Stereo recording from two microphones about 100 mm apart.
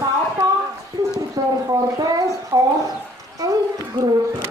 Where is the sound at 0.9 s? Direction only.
40° right (ahead or behind).